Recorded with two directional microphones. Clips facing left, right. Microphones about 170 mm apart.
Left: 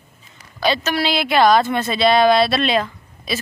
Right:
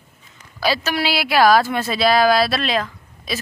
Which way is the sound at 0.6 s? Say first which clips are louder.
Left 1 dB; 10° right (ahead or behind).